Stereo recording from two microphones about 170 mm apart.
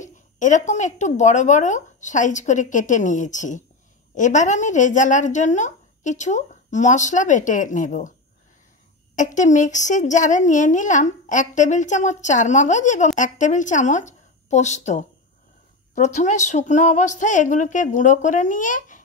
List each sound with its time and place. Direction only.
0.0 s a woman's voice: 45° left (ahead or behind)
9.1 s a woman's voice: 45° left (ahead or behind)